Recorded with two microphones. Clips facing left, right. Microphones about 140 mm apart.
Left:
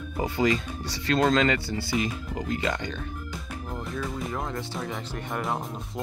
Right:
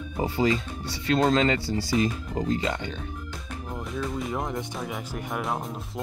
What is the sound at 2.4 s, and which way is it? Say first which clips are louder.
Speech: right 1 dB; 25° right (ahead or behind).